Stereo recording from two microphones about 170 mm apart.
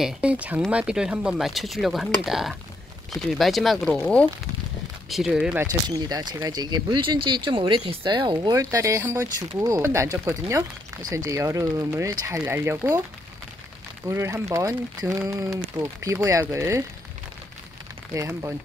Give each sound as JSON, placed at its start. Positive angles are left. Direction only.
{"t": 0.0, "sound": "speech", "side_deg": -5}
{"t": 5.7, "sound": "speech", "side_deg": -25}
{"t": 14.0, "sound": "speech", "side_deg": -15}
{"t": 18.1, "sound": "speech", "side_deg": -15}